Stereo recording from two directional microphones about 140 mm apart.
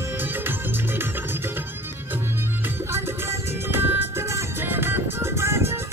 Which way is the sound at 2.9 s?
15° right (ahead or behind).